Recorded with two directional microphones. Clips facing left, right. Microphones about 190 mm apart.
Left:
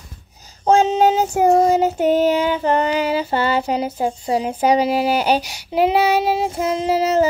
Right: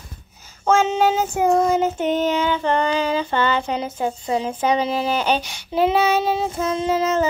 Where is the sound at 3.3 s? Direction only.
35° left (ahead or behind).